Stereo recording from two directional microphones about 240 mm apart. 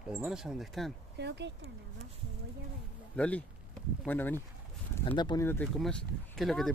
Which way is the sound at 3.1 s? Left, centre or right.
Centre.